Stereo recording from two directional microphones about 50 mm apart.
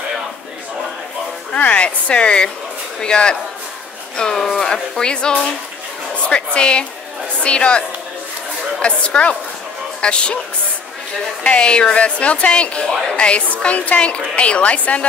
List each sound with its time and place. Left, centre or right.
1.5 s a woman's voice: left
8.8 s a woman's voice: left
11.4 s a woman's voice: left